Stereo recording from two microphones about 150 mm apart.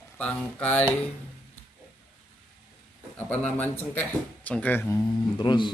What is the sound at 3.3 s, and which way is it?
Speech, 10° left (ahead or behind).